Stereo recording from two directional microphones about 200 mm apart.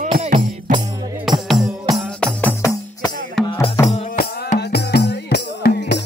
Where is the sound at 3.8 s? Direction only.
35° left (ahead or behind).